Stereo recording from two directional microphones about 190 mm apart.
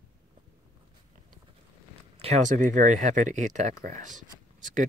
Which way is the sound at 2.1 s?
35° right (ahead or behind).